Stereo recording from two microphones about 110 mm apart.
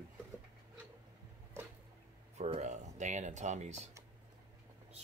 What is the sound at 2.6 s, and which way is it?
Speech, 90° right.